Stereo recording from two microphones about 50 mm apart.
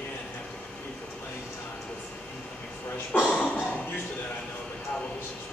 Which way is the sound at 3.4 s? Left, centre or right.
Left.